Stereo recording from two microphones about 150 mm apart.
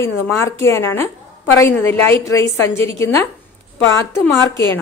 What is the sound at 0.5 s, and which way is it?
A woman's voice, 20° left (ahead or behind).